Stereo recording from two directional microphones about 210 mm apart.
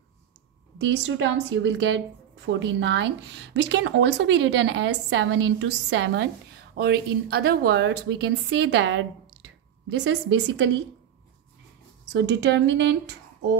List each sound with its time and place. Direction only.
0.7 s a woman's voice: 60° right (ahead or behind)
6.7 s a woman's voice: 50° right (ahead or behind)
12.1 s a woman's voice: 55° right (ahead or behind)